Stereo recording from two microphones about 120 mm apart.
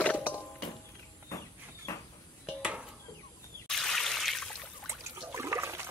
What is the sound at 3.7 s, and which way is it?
Water, centre (ahead or behind).